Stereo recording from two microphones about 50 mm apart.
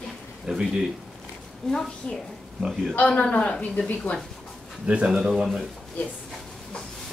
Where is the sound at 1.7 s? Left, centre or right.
Centre.